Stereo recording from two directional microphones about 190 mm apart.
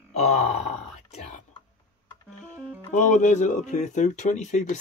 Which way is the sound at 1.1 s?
40° left (ahead or behind).